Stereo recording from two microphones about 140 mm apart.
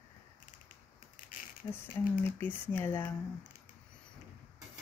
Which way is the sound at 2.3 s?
15° left (ahead or behind).